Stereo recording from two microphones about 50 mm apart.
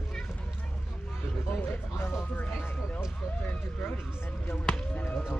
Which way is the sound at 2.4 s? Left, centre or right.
Left.